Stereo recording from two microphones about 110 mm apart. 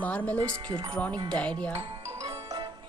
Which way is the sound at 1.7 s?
30° right (ahead or behind).